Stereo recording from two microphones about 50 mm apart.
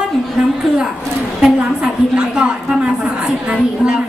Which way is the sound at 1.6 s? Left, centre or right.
Centre.